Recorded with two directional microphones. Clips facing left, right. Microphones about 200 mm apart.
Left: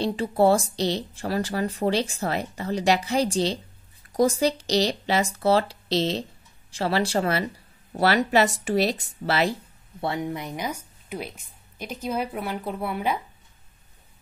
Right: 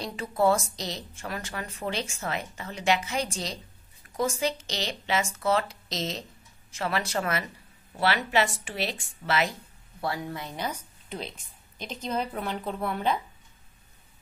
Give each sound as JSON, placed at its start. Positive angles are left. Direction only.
{"t": 0.0, "sound": "speech", "side_deg": 30}